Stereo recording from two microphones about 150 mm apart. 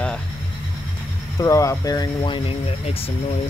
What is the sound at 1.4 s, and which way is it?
Speech, 20° left (ahead or behind).